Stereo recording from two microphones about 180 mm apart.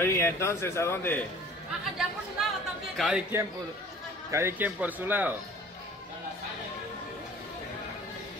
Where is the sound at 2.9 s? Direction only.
Centre (ahead or behind).